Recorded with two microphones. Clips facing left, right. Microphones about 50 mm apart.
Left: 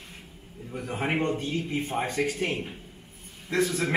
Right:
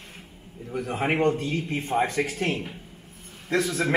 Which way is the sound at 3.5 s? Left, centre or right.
Centre.